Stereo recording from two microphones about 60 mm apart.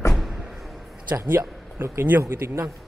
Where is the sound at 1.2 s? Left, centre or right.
Right.